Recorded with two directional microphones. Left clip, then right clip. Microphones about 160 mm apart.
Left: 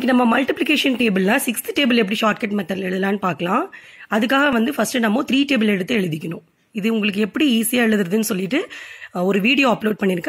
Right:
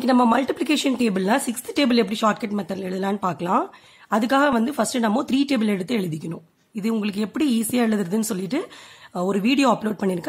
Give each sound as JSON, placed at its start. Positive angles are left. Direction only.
{"t": 0.0, "sound": "speech", "side_deg": 15}